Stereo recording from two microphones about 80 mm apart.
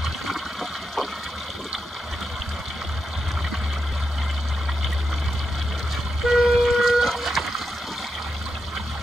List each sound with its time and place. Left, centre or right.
0.0 s toilet flush: centre
6.2 s splash: centre